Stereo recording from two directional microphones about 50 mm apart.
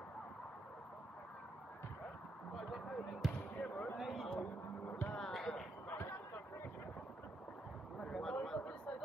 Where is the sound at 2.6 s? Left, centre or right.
Centre.